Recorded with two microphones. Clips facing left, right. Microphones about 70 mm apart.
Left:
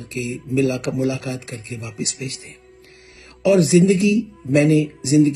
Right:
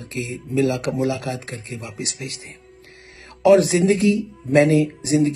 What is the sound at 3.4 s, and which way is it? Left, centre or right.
Speech, right.